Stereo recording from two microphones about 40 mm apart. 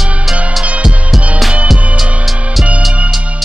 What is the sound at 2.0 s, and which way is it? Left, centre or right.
Music, centre.